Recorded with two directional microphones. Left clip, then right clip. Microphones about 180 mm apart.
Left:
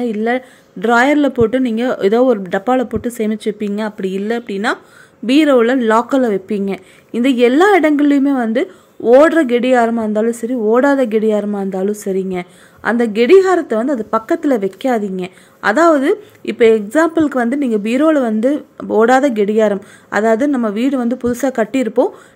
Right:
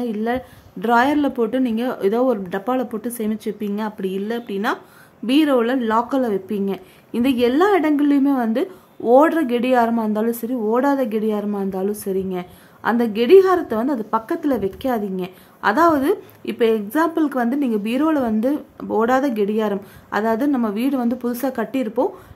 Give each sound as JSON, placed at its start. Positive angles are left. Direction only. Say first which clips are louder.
{"t": 0.0, "sound": "a woman's voice", "louder": "left 6 dB", "side_deg": 15}